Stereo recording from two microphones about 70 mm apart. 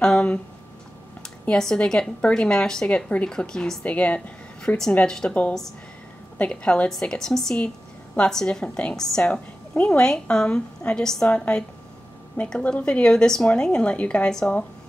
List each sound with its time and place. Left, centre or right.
0.0 s a sound: centre
1.2 s a woman's voice: centre
3.8 s a woman's voice: centre
6.3 s a woman's voice: centre